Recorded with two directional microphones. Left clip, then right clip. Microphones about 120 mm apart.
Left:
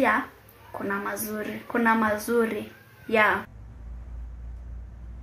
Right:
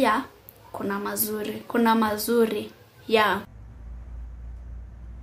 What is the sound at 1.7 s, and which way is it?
A woman's voice, 30° right (ahead or behind).